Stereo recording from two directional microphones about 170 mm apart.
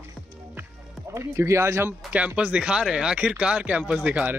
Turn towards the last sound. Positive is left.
turn(degrees=-5)  # may be behind; listen again after turning